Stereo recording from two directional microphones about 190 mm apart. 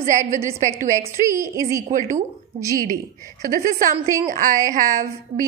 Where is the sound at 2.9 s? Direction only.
45° right (ahead or behind).